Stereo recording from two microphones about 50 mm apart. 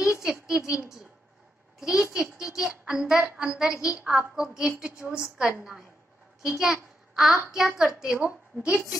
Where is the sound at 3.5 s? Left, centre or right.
Centre.